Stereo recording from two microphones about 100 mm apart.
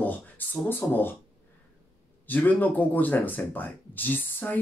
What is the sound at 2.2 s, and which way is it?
Speech, 15° left (ahead or behind).